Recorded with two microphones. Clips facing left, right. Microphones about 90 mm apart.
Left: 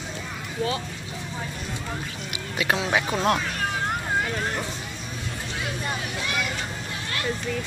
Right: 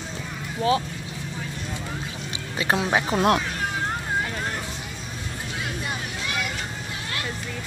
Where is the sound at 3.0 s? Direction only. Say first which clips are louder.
Right 3 dB; 15° right (ahead or behind).